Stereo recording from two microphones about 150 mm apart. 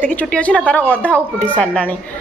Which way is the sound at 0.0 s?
10° left (ahead or behind).